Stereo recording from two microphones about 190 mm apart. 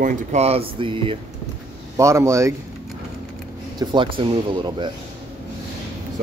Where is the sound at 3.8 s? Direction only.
25° right (ahead or behind).